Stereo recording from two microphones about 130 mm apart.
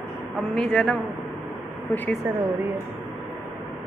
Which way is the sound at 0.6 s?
5° left (ahead or behind).